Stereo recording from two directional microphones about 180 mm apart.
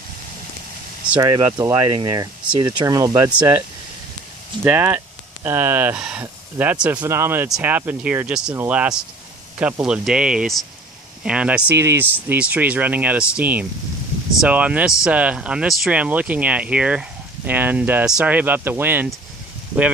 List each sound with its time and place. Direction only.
1.2 s speech: 20° right (ahead or behind)
4.6 s speech: 10° right (ahead or behind)